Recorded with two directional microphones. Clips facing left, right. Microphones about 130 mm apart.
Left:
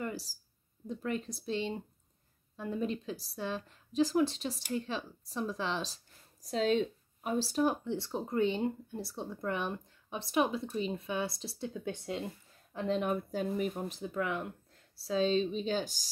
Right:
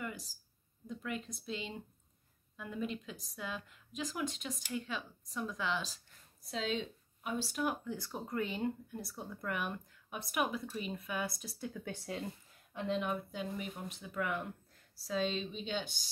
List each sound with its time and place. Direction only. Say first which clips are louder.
0.0 s a sound: left 5 dB; 35° left (ahead or behind)
0.8 s a woman's voice: left 5 dB; 35° left (ahead or behind)
12.7 s a woman's voice: left 4 dB; 40° left (ahead or behind)